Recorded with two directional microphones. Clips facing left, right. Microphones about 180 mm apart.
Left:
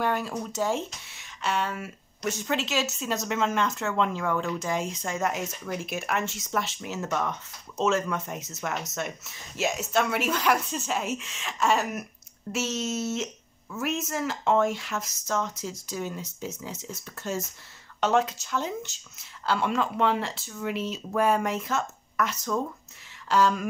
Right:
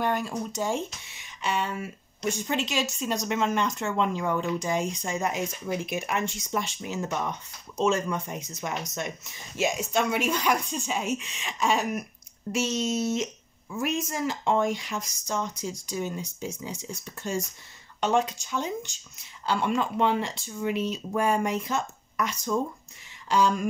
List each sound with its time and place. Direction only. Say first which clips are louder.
0.0 s a sound: even; 5° left (ahead or behind)
0.5 s a woman's voice: left 1 dB; 5° left (ahead or behind)
3.8 s speech: even; 5° right (ahead or behind)
4.6 s a woman's voice: right 2 dB; centre (ahead or behind)
7.0 s speech: left 1 dB; 15° right (ahead or behind)
7.8 s a woman's voice: even; centre (ahead or behind)
15.2 s speech: left 2 dB; 15° right (ahead or behind)
15.5 s a woman's voice: right 2 dB; 5° left (ahead or behind)